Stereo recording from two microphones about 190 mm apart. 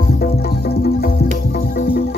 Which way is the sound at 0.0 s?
55° left (ahead or behind).